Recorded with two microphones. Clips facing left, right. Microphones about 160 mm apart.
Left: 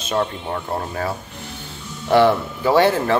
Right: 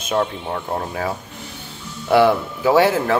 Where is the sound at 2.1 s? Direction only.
10° right (ahead or behind).